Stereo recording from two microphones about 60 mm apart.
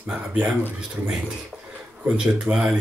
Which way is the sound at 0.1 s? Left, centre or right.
Centre.